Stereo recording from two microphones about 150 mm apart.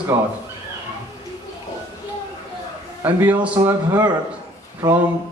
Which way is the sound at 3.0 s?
10° right (ahead or behind).